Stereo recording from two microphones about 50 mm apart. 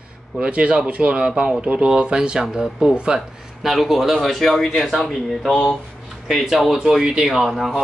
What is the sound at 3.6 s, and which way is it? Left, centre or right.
Speech, centre.